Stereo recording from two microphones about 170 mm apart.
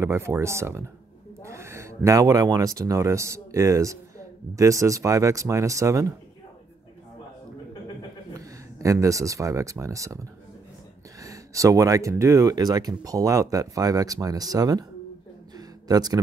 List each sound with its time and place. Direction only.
0.0 s speech: 15° right (ahead or behind)
8.4 s speech: 20° right (ahead or behind)
15.5 s a sound: 20° right (ahead or behind)